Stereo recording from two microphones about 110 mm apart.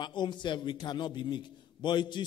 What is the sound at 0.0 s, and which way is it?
A man's voice, 45° left (ahead or behind).